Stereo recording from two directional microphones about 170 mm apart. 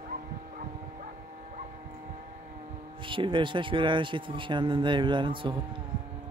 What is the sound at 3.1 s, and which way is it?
Speech, 30° right (ahead or behind).